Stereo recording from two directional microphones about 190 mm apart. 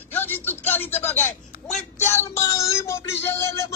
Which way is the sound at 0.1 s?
10° left (ahead or behind).